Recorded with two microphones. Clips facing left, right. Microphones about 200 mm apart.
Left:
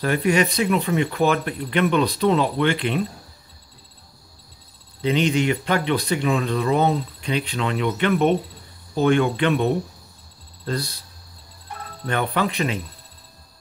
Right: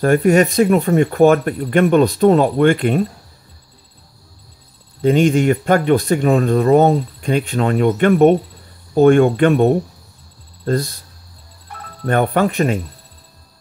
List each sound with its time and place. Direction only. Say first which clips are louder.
0.0 s speech: right 7 dB; 50° right (ahead or behind)
5.0 s speech: right 7 dB; 50° right (ahead or behind)
12.1 s speech: right 7 dB; 50° right (ahead or behind)